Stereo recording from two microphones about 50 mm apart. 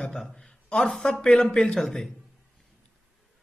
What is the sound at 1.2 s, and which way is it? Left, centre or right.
Speech, centre.